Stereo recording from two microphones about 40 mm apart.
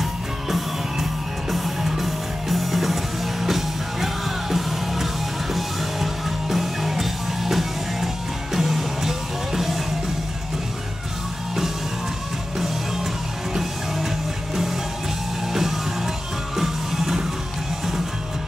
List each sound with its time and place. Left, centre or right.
0.0 s music: centre
12.5 s music: centre
15.5 s music: centre